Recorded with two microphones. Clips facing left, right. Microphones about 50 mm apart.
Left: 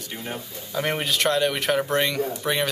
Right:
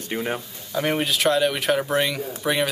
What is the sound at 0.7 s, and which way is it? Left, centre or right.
Speech, centre.